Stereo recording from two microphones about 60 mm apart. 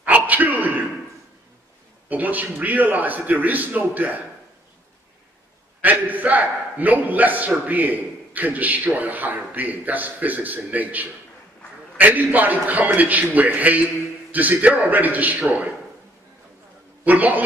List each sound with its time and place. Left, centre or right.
0.0 s a sound: right
2.0 s a man's voice: right
5.8 s a man's voice: right
17.0 s a man's voice: right